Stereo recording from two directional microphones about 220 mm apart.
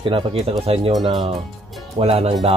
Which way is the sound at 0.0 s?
25° right (ahead or behind).